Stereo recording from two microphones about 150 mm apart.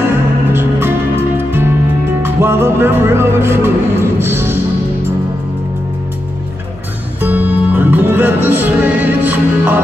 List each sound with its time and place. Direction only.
0.5 s music: 15° right (ahead or behind)
2.2 s speech: 15° right (ahead or behind)
7.2 s music: 10° right (ahead or behind)